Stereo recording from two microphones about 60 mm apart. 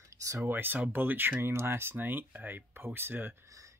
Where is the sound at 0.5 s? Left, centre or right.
Right.